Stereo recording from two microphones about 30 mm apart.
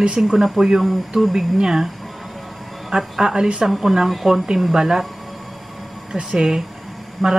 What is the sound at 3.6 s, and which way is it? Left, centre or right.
Speech, centre.